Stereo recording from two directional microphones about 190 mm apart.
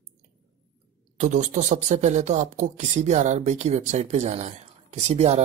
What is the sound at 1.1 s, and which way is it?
Speech, 40° right (ahead or behind).